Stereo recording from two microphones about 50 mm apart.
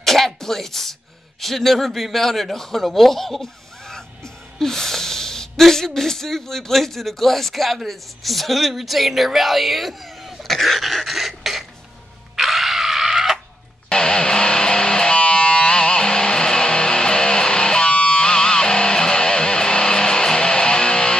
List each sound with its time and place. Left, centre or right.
0.0 s sneeze: centre
1.4 s a man's voice: centre
4.6 s speech: centre
12.4 s a sound: centre
13.8 s music: centre